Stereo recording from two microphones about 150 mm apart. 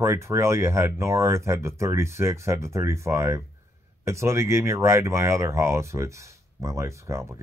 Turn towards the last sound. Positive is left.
turn(degrees=-20)  # may be behind; listen again after turning